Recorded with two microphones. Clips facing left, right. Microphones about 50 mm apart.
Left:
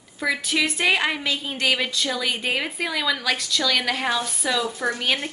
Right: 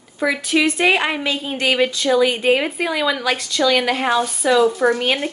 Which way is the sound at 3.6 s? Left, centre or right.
Centre.